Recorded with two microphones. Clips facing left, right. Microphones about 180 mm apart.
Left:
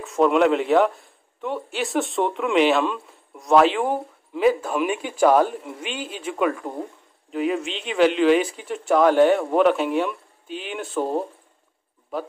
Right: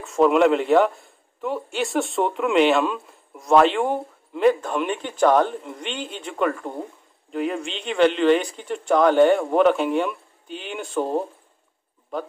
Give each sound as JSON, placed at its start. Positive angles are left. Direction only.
{"t": 0.0, "sound": "speech", "side_deg": 0}